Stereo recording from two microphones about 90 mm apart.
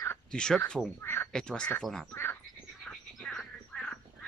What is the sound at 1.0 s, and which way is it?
Speech, 25° left (ahead or behind).